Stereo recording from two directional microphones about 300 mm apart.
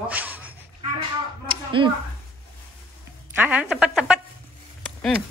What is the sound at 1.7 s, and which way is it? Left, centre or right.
Speech, centre.